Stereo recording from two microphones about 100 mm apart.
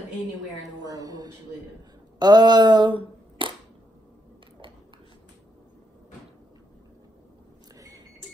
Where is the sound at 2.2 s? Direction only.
45° right (ahead or behind).